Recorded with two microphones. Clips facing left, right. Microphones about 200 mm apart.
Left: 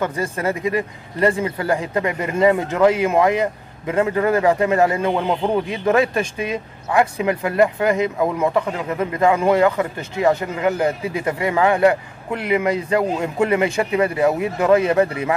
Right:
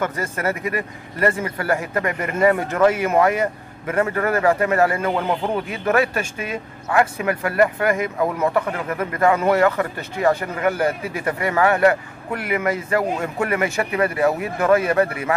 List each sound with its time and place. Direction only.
0.0 s speech: 15° left (ahead or behind)